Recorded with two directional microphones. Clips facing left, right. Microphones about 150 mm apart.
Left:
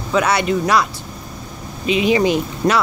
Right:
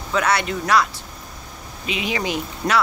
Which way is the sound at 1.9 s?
25° left (ahead or behind).